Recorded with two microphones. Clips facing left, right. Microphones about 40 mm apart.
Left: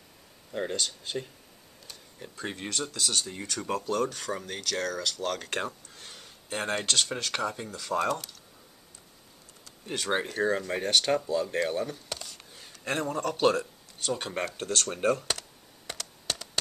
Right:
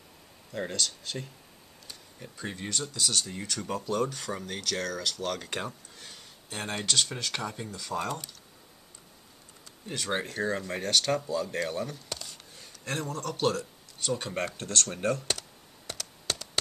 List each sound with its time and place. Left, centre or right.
0.5 s speech: centre
9.8 s speech: centre
10.7 s speech: centre